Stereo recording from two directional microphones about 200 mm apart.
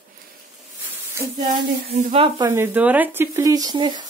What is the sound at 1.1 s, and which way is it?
Speech, 15° right (ahead or behind).